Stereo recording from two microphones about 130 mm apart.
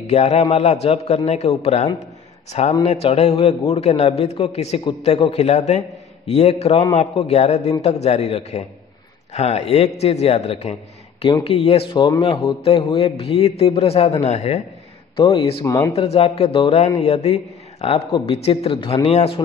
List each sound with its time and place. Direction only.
0.0 s a man's voice: 60° left (ahead or behind)
15.1 s a man's voice: 40° left (ahead or behind)
15.6 s speech: 25° left (ahead or behind)
15.9 s a man's voice: 50° left (ahead or behind)